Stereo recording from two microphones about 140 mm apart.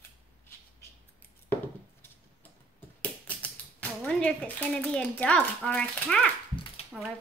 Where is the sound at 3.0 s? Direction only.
10° left (ahead or behind).